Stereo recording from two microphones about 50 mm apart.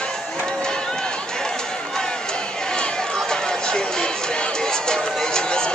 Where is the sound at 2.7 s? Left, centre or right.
Centre.